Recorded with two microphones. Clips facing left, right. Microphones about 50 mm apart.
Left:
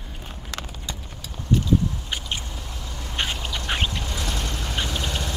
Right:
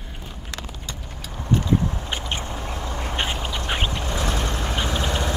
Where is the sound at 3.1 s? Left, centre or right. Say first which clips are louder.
Left 1 dB; right.